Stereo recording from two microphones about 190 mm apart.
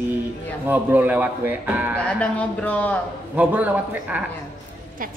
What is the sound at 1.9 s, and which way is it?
A woman's voice, 5° left (ahead or behind).